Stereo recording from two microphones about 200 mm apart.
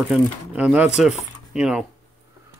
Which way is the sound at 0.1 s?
5° right (ahead or behind).